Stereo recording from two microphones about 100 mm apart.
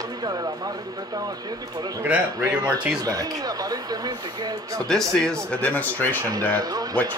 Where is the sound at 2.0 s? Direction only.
20° right (ahead or behind).